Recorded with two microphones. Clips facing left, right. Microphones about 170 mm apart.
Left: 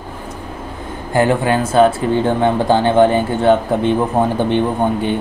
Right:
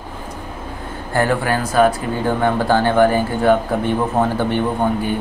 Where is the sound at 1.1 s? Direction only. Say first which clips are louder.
Left 4 dB; 20° left (ahead or behind).